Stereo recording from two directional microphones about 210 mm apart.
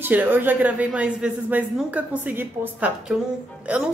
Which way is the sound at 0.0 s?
10° right (ahead or behind).